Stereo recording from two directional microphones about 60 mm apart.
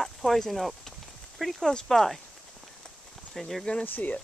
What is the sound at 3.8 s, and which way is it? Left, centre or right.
Speech, left.